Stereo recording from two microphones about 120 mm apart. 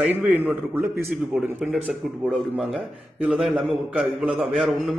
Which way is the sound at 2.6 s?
5° right (ahead or behind).